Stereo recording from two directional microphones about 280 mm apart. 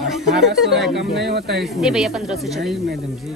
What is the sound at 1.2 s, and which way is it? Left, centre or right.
Speech, right.